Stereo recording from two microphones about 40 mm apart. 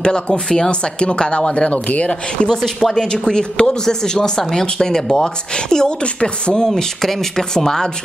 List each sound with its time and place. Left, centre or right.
0.0 s speech: centre
2.4 s speech: centre
6.8 s speech: centre